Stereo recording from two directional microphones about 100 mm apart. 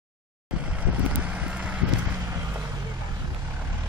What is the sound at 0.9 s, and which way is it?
Vehicle, 15° right (ahead or behind).